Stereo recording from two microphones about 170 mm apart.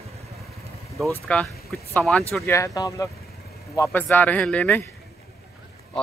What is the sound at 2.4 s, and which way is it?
Speech, 15° left (ahead or behind).